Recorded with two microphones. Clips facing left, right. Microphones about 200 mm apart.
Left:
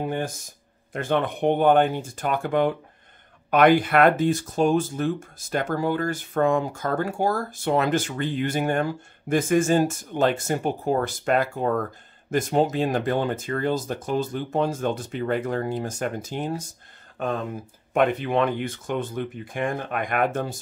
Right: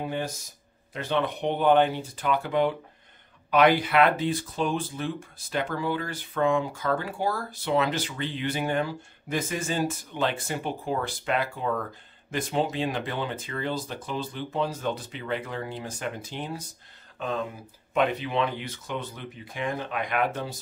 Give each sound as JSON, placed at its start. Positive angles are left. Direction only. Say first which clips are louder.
{"t": 0.9, "sound": "speech", "louder": "left 3 dB", "side_deg": 50}